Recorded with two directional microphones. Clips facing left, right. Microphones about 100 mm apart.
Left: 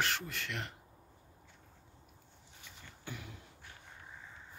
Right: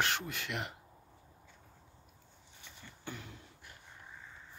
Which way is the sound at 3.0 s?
5° left (ahead or behind).